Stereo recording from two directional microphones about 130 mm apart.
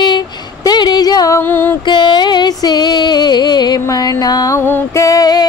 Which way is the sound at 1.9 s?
35° left (ahead or behind).